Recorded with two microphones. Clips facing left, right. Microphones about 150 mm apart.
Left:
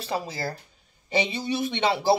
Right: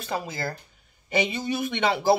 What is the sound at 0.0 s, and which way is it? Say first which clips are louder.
Speech: left 1 dB; 30° left (ahead or behind).